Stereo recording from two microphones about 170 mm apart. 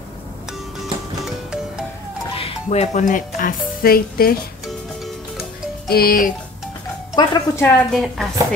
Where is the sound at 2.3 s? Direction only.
35° left (ahead or behind); by 4.3 s 60° left (ahead or behind).